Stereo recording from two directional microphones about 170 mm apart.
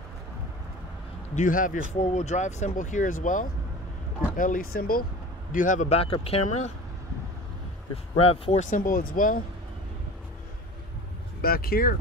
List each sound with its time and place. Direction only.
1.3 s a man's voice: 50° left (ahead or behind)
7.9 s a man's voice: 35° left (ahead or behind)
8.6 s speech: 50° left (ahead or behind)
11.4 s speech: 60° left (ahead or behind)